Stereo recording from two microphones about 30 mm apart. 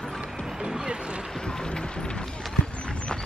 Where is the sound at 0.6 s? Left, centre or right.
Right.